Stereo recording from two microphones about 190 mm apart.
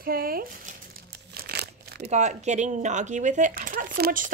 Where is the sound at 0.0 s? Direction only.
50° right (ahead or behind).